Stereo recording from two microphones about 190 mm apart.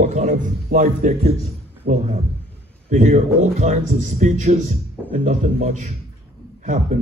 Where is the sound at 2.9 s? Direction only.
40° right (ahead or behind).